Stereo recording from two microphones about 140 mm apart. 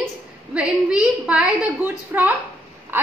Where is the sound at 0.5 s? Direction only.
10° right (ahead or behind).